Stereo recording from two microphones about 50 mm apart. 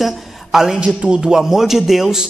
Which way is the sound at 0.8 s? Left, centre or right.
Right.